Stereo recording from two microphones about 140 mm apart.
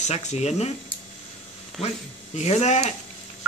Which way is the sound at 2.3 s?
50° left (ahead or behind).